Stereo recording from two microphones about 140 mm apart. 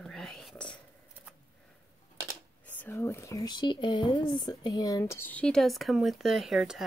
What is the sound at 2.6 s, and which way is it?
Speech, 10° left (ahead or behind).